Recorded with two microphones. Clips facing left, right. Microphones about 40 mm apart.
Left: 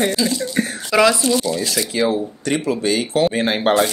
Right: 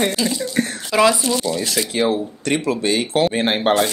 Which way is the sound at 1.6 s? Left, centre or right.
Right.